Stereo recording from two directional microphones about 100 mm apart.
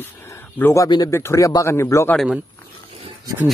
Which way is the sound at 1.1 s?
30° left (ahead or behind).